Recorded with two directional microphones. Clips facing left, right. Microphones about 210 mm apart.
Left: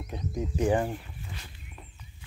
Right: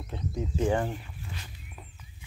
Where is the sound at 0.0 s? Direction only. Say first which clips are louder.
Left 1 dB; 15° left (ahead or behind).